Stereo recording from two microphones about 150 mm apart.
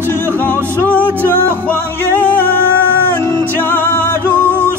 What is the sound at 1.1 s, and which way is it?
Music, 15° right (ahead or behind).